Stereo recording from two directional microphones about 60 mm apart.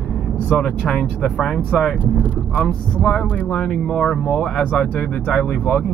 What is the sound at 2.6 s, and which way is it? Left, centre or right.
Speech, centre.